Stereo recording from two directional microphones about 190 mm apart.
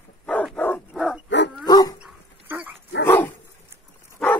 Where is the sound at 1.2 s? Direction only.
70° left (ahead or behind).